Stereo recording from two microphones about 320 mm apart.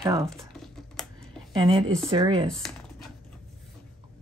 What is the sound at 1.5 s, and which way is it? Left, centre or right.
Speech, centre.